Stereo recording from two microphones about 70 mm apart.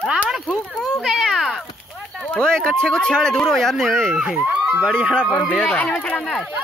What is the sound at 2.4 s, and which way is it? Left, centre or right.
Speech, centre.